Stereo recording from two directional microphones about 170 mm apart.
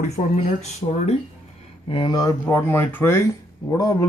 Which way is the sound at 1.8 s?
30° left (ahead or behind).